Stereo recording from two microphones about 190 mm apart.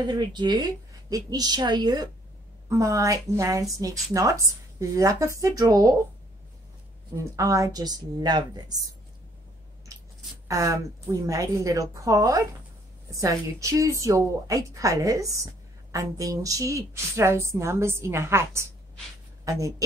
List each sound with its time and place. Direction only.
0.1 s a woman's voice: 25° right (ahead or behind)
7.3 s a woman's voice: 15° right (ahead or behind)
10.5 s a woman's voice: 15° right (ahead or behind)